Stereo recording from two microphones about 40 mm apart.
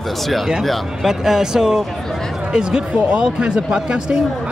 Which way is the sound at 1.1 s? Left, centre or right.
Centre.